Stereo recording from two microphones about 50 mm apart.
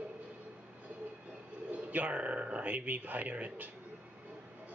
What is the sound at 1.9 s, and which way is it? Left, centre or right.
Speech, right.